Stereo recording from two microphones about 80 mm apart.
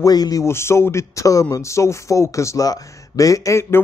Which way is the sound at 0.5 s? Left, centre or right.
Left.